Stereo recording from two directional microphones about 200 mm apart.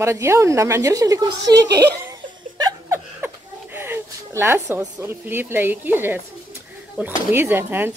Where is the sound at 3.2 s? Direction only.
10° right (ahead or behind).